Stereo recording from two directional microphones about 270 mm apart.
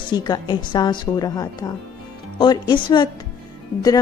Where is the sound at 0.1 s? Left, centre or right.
Centre.